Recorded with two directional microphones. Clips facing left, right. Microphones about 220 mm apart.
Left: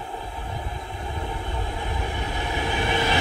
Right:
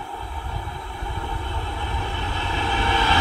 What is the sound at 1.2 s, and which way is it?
Vehicle, 20° left (ahead or behind).